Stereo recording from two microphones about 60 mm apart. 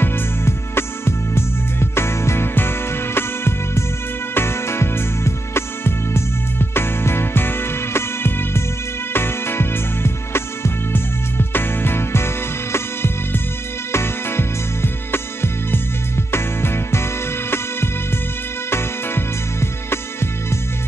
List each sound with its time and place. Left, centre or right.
0.0 s music: left
18.7 s music: left